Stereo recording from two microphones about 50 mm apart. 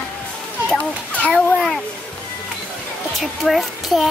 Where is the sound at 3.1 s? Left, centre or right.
Centre.